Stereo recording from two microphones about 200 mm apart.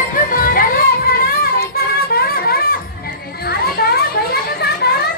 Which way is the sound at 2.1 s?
50° left (ahead or behind).